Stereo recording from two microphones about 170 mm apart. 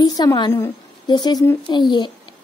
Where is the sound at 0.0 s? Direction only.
25° left (ahead or behind).